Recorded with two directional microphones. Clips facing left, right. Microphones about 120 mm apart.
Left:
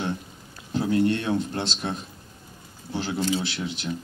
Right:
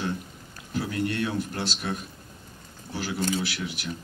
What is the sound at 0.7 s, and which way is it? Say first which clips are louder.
Speech: left 5 dB; 25° left (ahead or behind).